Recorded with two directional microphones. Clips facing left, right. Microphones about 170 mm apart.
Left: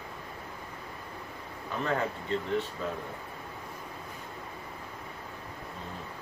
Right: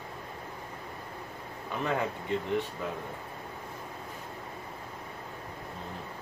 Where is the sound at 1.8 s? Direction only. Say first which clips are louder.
Even; 15° right (ahead or behind).